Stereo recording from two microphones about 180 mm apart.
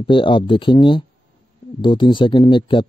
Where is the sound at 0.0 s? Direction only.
30° left (ahead or behind).